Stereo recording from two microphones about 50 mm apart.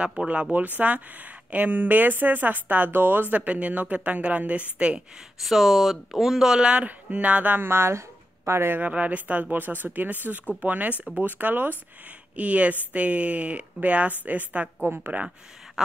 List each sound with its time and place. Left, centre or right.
0.2 s speech: right
0.5 s speech: right
3.3 s speech: right
5.4 s speech: centre
6.6 s speech: right
7.5 s speech: right
8.7 s speech: right
12.4 s speech: right